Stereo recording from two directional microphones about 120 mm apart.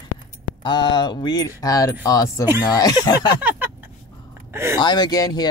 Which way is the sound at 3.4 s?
15° right (ahead or behind).